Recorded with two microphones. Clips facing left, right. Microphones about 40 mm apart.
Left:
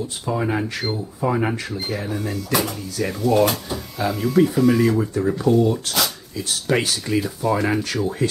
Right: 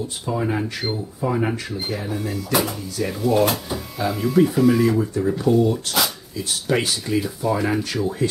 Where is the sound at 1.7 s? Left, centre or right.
Centre.